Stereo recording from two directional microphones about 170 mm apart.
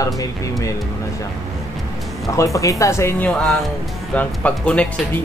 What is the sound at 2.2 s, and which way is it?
Speech, 20° left (ahead or behind).